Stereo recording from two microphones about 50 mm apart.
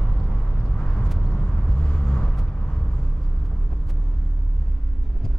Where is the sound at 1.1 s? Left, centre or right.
Centre.